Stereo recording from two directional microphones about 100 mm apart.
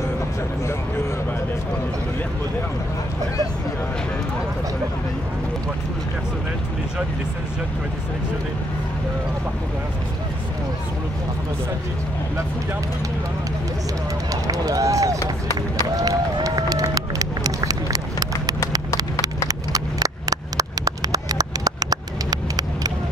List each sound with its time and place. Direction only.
14.3 s speech: 35° right (ahead or behind)
16.0 s run: 40° right (ahead or behind)
19.2 s a sound: 40° right (ahead or behind)